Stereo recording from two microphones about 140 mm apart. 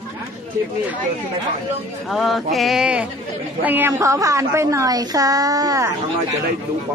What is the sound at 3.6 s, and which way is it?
A woman's voice, 15° right (ahead or behind).